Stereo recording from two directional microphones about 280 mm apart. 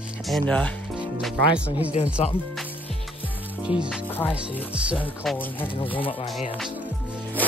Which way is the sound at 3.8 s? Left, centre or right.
Centre.